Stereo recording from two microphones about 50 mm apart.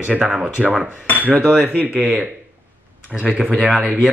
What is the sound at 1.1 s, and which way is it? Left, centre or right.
Speech, right.